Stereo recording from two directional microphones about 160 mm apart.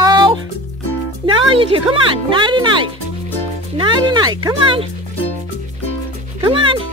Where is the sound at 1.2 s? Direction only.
30° right (ahead or behind).